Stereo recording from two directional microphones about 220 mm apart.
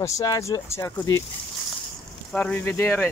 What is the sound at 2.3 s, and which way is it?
Speech, 5° left (ahead or behind).